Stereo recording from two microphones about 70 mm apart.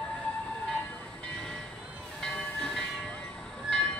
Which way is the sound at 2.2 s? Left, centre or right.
Centre.